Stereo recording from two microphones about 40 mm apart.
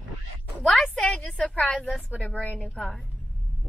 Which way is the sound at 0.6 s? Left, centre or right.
Centre.